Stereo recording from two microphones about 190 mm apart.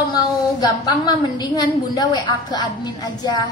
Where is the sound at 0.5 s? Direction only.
20° left (ahead or behind).